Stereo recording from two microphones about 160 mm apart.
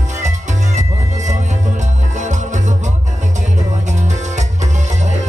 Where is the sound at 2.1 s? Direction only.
50° right (ahead or behind).